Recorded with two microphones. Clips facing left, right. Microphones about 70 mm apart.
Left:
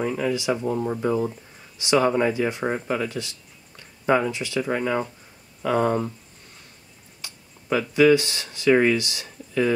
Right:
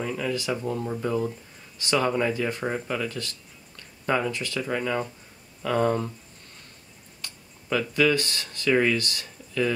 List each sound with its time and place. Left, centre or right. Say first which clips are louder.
0.0 s speech: left 4 dB; centre
7.2 s speech: left 1 dB; centre